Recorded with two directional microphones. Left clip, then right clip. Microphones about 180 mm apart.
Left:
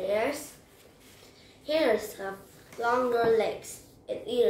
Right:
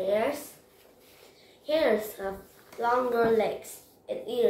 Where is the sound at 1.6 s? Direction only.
5° left (ahead or behind).